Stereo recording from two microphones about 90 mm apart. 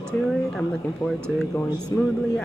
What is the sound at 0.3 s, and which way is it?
Speech, 5° left (ahead or behind).